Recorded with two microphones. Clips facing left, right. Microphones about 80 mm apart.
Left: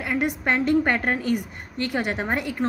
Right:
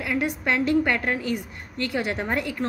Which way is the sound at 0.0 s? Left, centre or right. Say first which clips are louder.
Left 1 dB; left.